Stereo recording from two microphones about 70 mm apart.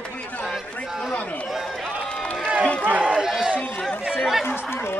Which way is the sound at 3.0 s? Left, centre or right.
Centre.